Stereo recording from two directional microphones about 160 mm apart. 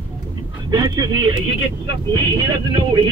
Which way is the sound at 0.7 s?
25° right (ahead or behind).